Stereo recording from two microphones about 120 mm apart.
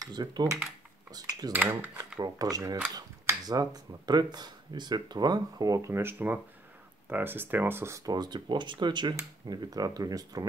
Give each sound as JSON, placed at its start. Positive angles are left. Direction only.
{"t": 0.0, "sound": "speech", "side_deg": -35}
{"t": 1.5, "sound": "speech", "side_deg": -15}
{"t": 2.1, "sound": "speech", "side_deg": -30}